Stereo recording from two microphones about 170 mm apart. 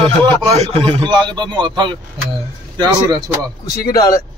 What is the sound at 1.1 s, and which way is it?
Speech, 25° right (ahead or behind).